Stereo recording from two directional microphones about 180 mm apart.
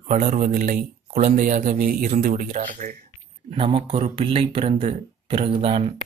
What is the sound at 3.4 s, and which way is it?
Speech, 30° right (ahead or behind).